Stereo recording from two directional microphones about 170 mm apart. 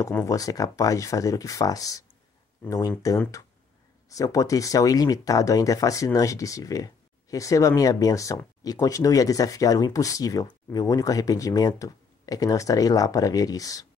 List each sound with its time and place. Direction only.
0.0 s speech: 15° left (ahead or behind)
4.1 s speech: 20° left (ahead or behind)